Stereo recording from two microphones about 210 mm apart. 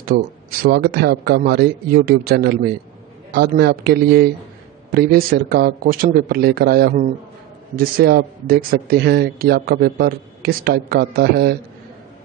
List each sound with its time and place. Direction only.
0.0 s speech: 45° right (ahead or behind)